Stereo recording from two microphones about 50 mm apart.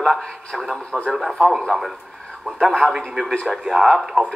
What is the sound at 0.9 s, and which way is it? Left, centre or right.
Speech, right.